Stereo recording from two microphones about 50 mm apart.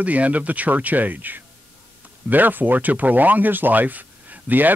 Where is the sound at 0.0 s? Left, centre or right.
Right.